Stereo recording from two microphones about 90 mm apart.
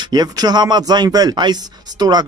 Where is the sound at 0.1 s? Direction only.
50° right (ahead or behind).